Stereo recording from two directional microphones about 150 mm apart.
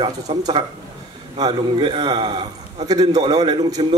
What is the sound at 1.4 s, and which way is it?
A man's voice, 30° right (ahead or behind).